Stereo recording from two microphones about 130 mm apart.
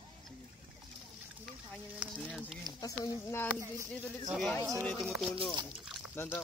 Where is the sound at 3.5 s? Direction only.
20° right (ahead or behind).